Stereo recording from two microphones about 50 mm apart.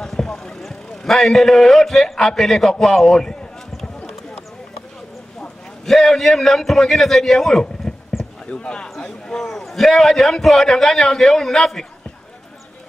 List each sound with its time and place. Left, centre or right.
0.0 s clip-clop: centre
2.8 s a man's voice: centre
5.9 s a man's voice: centre
8.5 s speech: centre
9.4 s a man's voice: centre